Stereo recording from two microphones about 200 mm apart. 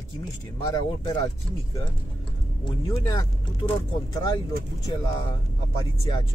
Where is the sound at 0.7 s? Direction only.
20° left (ahead or behind).